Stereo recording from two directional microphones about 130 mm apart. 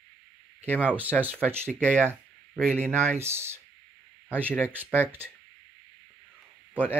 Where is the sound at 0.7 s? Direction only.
10° left (ahead or behind).